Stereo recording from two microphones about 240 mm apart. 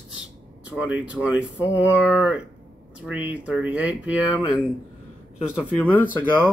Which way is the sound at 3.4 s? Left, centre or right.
Centre.